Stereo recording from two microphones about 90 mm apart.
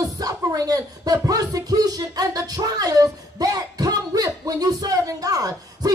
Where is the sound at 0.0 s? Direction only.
40° right (ahead or behind).